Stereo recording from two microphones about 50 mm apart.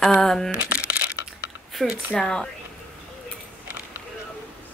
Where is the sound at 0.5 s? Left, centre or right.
Right.